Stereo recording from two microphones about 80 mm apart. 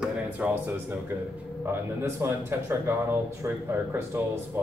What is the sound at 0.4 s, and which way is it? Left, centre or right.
Speech, centre.